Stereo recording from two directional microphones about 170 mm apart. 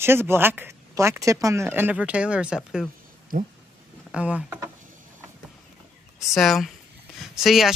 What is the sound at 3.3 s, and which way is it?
Speech, 55° right (ahead or behind).